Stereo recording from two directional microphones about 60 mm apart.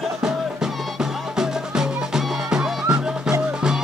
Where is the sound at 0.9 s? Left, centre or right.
Centre.